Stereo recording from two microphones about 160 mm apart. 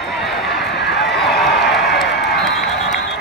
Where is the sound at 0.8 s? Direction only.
90° left.